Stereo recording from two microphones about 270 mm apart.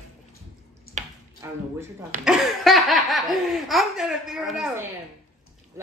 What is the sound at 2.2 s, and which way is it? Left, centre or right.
Laughter, centre.